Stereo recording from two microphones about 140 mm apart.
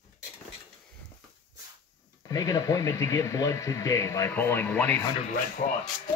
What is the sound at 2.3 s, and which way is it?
Speech, 25° left (ahead or behind).